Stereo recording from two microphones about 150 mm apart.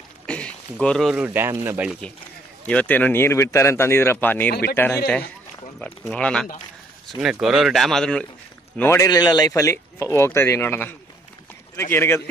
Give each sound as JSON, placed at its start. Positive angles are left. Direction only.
{"t": 0.3, "sound": "a sound", "side_deg": 5}
{"t": 1.2, "sound": "speech", "side_deg": -15}
{"t": 2.7, "sound": "speech", "side_deg": 10}
{"t": 8.7, "sound": "speech", "side_deg": 20}